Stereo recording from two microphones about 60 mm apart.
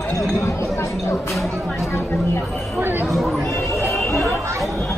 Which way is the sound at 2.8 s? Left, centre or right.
Right.